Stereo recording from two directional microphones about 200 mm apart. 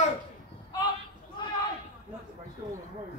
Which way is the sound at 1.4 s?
25° left (ahead or behind).